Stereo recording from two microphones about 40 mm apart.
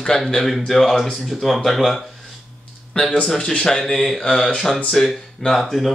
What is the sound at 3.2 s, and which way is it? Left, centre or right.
Speech, centre.